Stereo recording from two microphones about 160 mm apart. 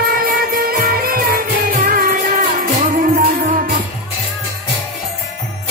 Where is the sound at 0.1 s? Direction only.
65° right (ahead or behind).